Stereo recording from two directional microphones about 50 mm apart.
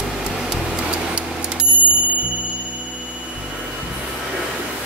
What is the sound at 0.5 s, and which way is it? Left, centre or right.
Music, centre.